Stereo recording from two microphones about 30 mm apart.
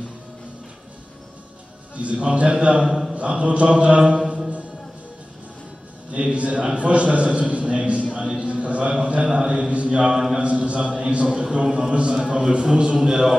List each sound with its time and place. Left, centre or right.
2.0 s a man's voice: right
2.6 s mantra: right
2.9 s a sound: centre
3.2 s a man's voice: right
6.3 s a man's voice: right
9.0 s mantra: right
10.1 s a man's voice: centre
10.4 s a man's voice: right
11.0 s mantra: right
11.6 s a man's voice: right
11.9 s mantra: right
12.6 s a man's voice: right